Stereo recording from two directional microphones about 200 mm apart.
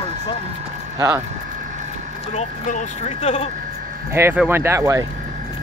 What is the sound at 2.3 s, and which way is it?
Speech, 35° left (ahead or behind).